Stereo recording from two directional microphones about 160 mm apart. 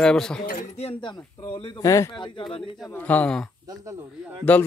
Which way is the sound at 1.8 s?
20° left (ahead or behind).